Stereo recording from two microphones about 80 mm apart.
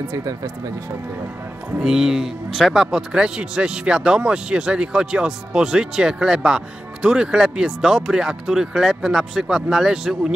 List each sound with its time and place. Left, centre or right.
0.1 s speech: right
1.8 s a man's voice: centre